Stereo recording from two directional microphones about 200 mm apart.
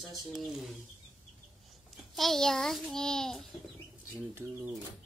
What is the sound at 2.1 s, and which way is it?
A child's voice, centre (ahead or behind).